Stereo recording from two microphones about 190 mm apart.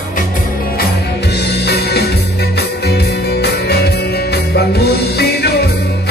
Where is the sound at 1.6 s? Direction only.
60° left (ahead or behind).